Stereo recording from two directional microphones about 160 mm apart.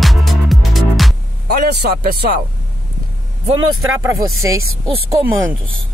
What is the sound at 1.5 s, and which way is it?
Speech, 75° right (ahead or behind).